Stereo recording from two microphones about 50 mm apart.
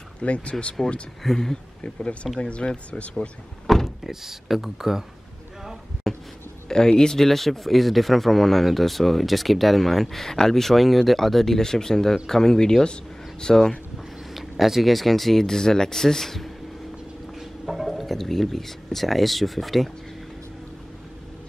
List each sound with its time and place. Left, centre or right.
0.2 s speech: left
1.2 s speech: centre
1.8 s speech: left
3.6 s speech: centre
5.6 s a sound: centre
6.7 s speech: centre
14.3 s speech: centre